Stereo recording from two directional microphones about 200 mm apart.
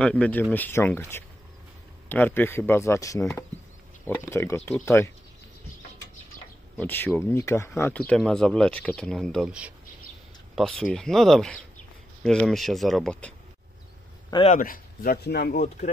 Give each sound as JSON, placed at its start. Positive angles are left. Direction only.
{"t": 0.0, "sound": "speech", "side_deg": 5}
{"t": 6.8, "sound": "speech", "side_deg": 10}
{"t": 14.5, "sound": "speech", "side_deg": 45}